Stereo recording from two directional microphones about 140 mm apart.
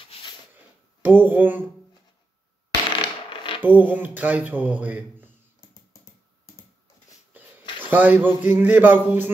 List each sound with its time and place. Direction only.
0.0 s a sound: 40° left (ahead or behind)
1.0 s speech: 10° right (ahead or behind)
3.0 s creak: 35° left (ahead or behind)
3.6 s speech: 10° right (ahead or behind)
7.8 s speech: 15° right (ahead or behind)